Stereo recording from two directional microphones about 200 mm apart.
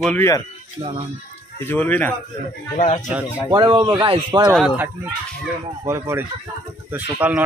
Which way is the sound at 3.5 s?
20° right (ahead or behind).